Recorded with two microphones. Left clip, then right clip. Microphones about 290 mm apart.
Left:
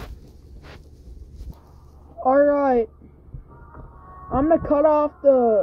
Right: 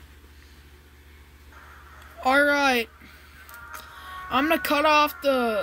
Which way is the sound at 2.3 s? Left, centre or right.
Right.